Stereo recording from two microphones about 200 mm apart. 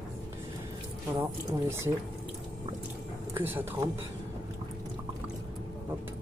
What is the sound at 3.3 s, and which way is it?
Speech, 10° right (ahead or behind).